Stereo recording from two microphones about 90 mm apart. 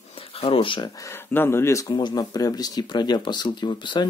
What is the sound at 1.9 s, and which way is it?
Speech, 50° left (ahead or behind).